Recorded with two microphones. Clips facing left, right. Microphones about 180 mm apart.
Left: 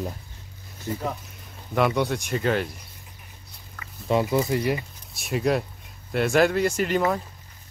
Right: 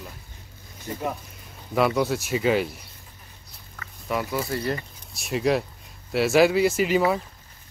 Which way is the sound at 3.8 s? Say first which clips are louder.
Left 5 dB; 25° left (ahead or behind).